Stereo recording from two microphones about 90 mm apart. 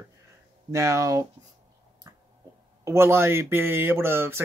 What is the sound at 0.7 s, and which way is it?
Speech, 35° right (ahead or behind).